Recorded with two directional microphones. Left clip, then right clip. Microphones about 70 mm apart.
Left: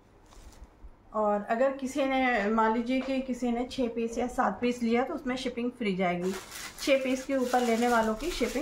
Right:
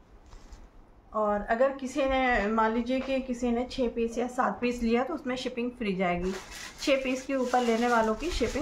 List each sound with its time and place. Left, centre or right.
1.1 s a woman's voice: right